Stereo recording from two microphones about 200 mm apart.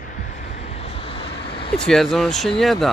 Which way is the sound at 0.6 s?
30° left (ahead or behind).